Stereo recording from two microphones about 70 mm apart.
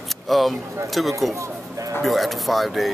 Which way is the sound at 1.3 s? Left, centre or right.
Right.